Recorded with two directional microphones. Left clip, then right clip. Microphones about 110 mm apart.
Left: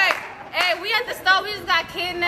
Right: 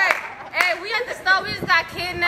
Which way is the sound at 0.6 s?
20° left (ahead or behind).